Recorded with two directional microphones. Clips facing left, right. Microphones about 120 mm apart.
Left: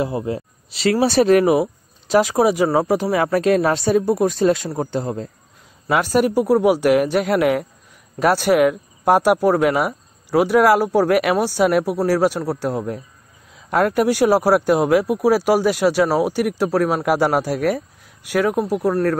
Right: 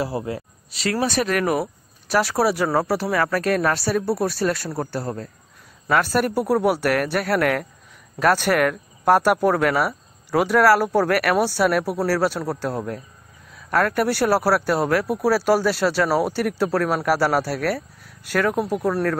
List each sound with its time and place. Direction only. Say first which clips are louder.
0.0 s speech: left 3 dB; 20° left (ahead or behind)
1.5 s speech: left 6 dB; 20° left (ahead or behind)